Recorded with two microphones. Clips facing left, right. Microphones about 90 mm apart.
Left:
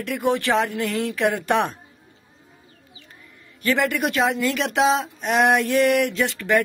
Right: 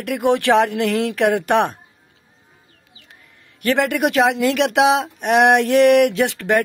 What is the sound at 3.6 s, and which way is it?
Speech, 65° right (ahead or behind).